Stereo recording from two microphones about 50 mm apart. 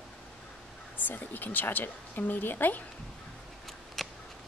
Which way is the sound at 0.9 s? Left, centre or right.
Left.